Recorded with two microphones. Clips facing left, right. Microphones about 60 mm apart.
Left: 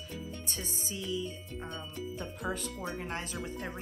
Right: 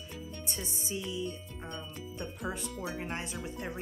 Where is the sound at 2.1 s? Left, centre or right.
Centre.